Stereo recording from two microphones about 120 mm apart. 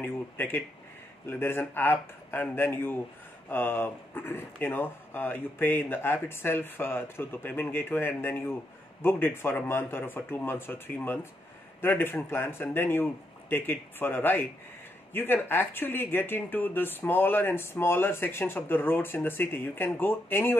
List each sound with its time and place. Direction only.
0.0 s a man's voice: 15° left (ahead or behind)